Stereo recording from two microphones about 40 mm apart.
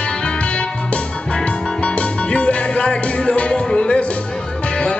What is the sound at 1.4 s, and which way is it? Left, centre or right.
Music, left.